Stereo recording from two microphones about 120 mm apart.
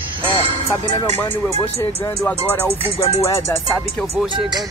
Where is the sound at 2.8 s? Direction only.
50° left (ahead or behind).